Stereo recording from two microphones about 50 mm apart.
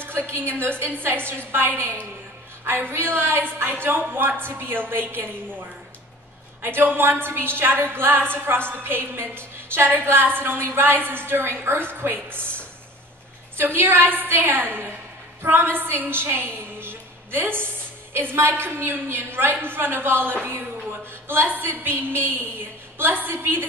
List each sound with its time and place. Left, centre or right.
0.3 s a woman's voice: right
13.6 s a woman's voice: right